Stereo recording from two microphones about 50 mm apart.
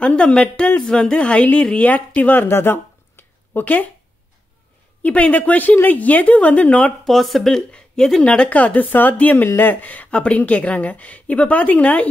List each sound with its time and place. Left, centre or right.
0.0 s a woman's voice: left
1.9 s speech: left
3.6 s speech: left
5.0 s speech: left
7.1 s speech: centre
8.2 s a woman's voice: left